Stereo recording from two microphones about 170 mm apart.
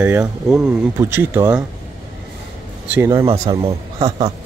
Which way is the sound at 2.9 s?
15° right (ahead or behind).